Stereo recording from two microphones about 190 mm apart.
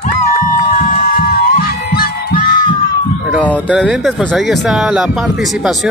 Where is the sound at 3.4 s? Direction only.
10° left (ahead or behind).